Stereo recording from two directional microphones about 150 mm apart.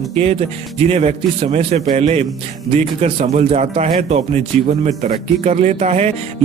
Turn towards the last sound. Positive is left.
turn(degrees=-45)  # may be behind; listen again after turning